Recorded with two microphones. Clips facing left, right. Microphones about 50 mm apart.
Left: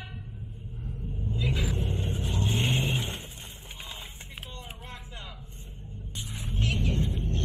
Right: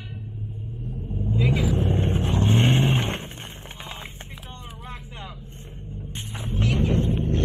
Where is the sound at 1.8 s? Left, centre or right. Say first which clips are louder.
Right 9 dB; right.